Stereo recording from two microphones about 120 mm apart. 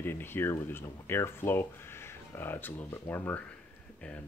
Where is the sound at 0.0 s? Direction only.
20° left (ahead or behind).